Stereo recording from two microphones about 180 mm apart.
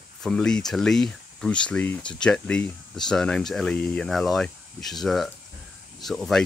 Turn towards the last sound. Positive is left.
turn(degrees=0)  # may be behind; listen again after turning